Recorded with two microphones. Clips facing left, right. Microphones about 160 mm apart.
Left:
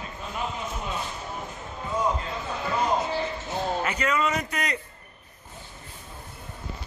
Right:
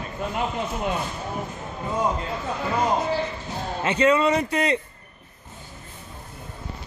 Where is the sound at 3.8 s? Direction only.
30° right (ahead or behind).